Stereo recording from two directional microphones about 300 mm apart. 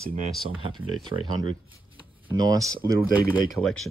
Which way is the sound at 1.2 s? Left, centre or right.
Centre.